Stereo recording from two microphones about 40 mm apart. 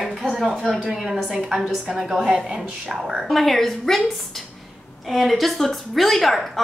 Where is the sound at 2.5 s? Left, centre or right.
Centre.